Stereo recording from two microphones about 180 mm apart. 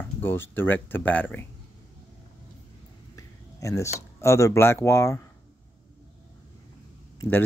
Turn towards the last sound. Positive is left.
turn(degrees=10)  # may be behind; listen again after turning